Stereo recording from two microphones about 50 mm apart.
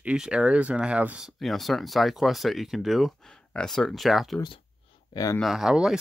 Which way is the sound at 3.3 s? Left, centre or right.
Centre.